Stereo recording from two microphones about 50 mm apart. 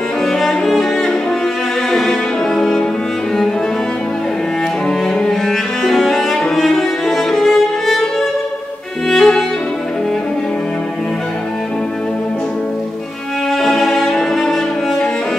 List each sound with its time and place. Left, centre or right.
0.2 s cello: centre
1.9 s music: centre
4.8 s cello: centre
9.1 s violin: centre
13.5 s cello: centre